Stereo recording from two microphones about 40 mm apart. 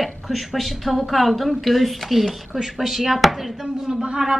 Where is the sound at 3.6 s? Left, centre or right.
Centre.